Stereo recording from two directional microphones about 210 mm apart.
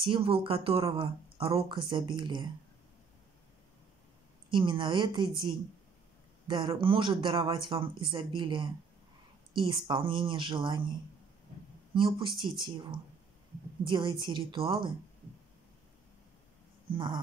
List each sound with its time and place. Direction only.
0.0 s a man's voice: 25° right (ahead or behind)
4.5 s a man's voice: 20° right (ahead or behind)
6.4 s a man's voice: 20° right (ahead or behind)
11.9 s a man's voice: 25° right (ahead or behind)
16.9 s a man's voice: 20° right (ahead or behind)